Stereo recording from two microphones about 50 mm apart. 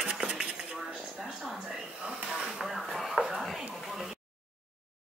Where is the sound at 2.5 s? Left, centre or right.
Centre.